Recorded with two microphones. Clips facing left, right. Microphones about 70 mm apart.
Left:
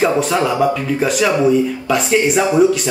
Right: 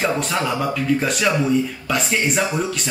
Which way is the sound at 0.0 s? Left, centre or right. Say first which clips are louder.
Left 6 dB; centre.